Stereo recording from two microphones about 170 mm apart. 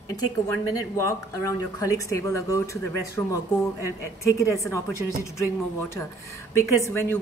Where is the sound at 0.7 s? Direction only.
20° left (ahead or behind).